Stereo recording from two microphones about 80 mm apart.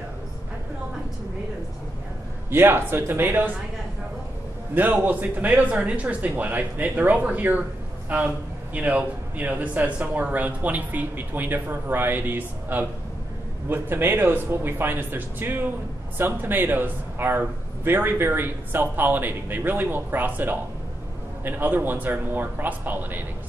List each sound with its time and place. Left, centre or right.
2.5 s a man's voice: right
4.7 s a man's voice: right